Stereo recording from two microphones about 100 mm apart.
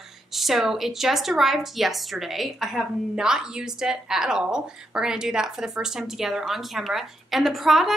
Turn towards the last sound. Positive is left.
turn(degrees=0)  # may be behind; listen again after turning